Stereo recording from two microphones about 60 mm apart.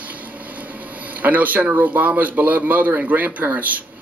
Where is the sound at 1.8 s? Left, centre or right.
Right.